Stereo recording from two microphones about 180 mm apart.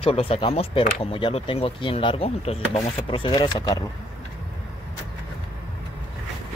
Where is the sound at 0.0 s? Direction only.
30° left (ahead or behind).